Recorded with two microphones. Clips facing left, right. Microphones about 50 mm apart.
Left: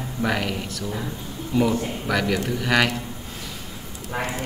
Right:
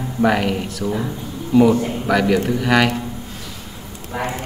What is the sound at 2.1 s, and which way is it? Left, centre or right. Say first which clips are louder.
Speech: right 7 dB; centre.